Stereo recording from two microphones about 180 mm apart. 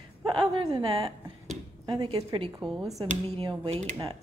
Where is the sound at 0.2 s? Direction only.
25° right (ahead or behind).